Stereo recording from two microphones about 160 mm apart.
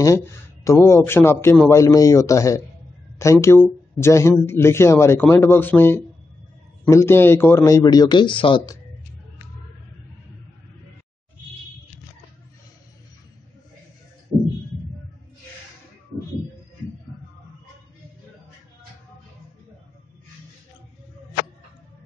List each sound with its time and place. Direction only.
0.0 s a man's voice: 20° left (ahead or behind)